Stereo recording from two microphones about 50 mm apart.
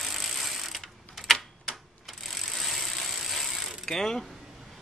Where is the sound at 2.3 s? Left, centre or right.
Centre.